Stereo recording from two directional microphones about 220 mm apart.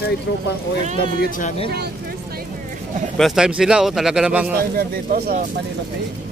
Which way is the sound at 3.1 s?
Centre (ahead or behind).